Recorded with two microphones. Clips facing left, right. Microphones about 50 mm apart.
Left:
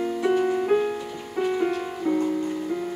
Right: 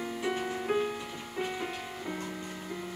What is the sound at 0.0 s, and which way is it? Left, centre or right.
Music, centre.